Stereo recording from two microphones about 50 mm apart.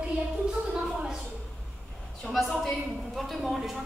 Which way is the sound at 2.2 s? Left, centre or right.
Centre.